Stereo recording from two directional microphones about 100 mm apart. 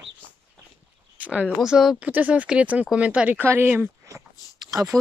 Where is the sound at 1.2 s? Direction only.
15° right (ahead or behind).